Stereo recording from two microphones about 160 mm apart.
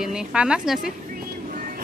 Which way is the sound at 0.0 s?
5° right (ahead or behind).